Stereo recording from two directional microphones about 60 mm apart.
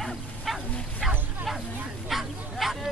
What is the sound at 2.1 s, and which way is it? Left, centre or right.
Bow-wow, centre.